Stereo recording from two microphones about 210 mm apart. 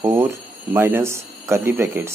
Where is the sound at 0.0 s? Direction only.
15° right (ahead or behind).